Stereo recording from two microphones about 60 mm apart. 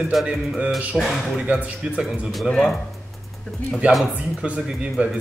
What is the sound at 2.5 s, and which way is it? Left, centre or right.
Speech, centre.